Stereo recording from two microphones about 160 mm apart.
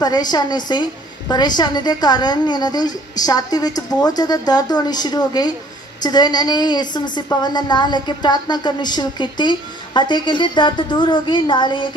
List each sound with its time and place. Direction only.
0.0 s a woman's voice: 25° left (ahead or behind)